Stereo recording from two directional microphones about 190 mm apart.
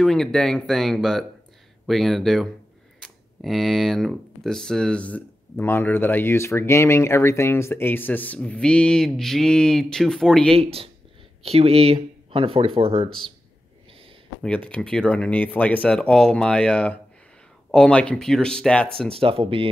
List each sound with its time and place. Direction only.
0.0 s speech: centre (ahead or behind)
10.5 s speech: 30° right (ahead or behind)
14.4 s speech: 5° left (ahead or behind)
19.1 s speech: 30° right (ahead or behind)